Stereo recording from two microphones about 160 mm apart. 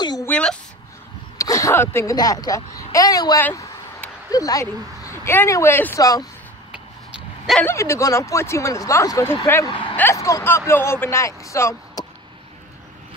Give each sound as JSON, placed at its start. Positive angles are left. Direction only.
{"t": 0.0, "sound": "a sound", "side_deg": 25}
{"t": 0.3, "sound": "a sound", "side_deg": 5}
{"t": 1.4, "sound": "a child's voice", "side_deg": 20}
{"t": 7.6, "sound": "speech", "side_deg": 20}
{"t": 9.7, "sound": "vehicle", "side_deg": 30}
{"t": 9.9, "sound": "speech", "side_deg": 15}